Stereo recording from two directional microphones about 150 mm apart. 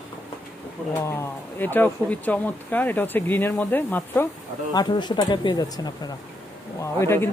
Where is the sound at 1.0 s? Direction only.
15° left (ahead or behind).